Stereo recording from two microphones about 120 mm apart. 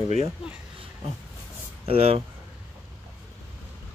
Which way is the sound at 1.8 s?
55° right (ahead or behind).